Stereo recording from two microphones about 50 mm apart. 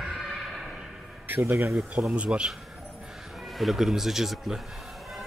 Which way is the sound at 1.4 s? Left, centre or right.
Right.